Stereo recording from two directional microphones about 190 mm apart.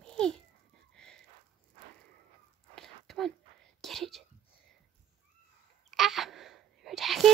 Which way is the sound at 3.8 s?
Centre (ahead or behind).